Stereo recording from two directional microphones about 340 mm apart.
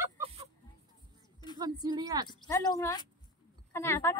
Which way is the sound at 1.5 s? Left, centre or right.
Centre.